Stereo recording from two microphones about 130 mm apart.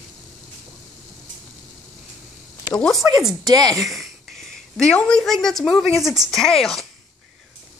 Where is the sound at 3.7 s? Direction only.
Centre (ahead or behind).